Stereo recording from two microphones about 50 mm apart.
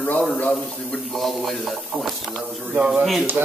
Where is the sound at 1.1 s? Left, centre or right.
Centre.